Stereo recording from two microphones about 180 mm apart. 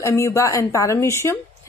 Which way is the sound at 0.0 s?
15° left (ahead or behind).